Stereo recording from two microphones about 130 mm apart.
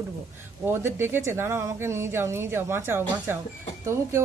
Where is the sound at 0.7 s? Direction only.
20° right (ahead or behind).